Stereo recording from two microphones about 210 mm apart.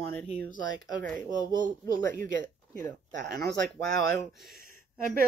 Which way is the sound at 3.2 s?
50° right (ahead or behind).